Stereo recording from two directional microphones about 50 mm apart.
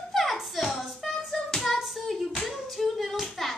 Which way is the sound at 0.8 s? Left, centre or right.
Centre.